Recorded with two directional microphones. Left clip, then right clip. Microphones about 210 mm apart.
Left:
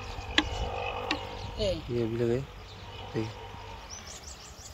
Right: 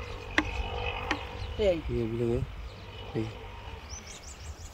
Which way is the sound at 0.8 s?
30° left (ahead or behind).